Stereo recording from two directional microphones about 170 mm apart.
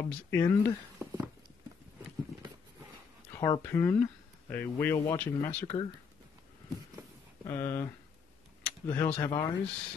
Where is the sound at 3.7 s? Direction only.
15° left (ahead or behind).